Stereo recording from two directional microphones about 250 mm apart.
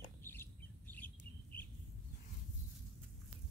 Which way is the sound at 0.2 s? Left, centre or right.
Centre.